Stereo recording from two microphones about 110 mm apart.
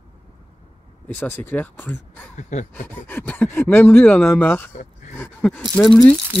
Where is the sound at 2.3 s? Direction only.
90° left.